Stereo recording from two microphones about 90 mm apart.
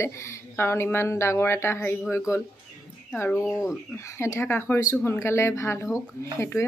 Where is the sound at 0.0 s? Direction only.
30° left (ahead or behind).